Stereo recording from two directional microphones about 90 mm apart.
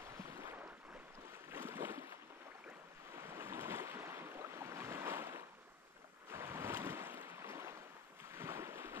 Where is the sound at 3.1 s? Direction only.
30° right (ahead or behind).